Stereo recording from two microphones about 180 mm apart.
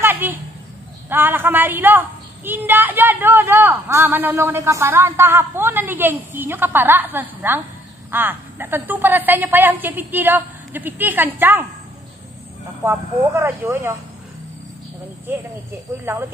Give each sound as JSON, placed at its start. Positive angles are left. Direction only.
{"t": 0.0, "sound": "a sound", "side_deg": -10}
{"t": 1.0, "sound": "a woman's voice", "side_deg": -10}
{"t": 12.8, "sound": "a woman's voice", "side_deg": -15}